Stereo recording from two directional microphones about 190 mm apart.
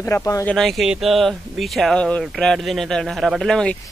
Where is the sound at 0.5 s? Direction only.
Centre (ahead or behind).